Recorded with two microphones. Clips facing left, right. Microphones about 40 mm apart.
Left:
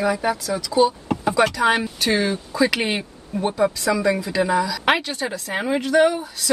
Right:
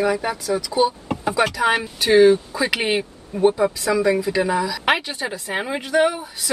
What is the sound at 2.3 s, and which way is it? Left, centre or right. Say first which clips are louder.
Speech: right 4 dB; centre.